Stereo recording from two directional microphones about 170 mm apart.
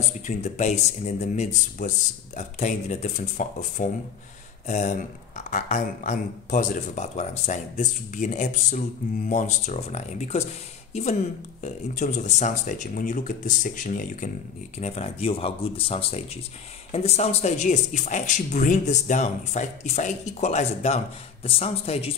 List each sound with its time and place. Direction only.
0.4 s speech: 40° left (ahead or behind)
14.8 s speech: 40° left (ahead or behind)